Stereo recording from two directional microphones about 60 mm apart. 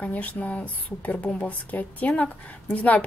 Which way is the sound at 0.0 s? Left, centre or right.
Left.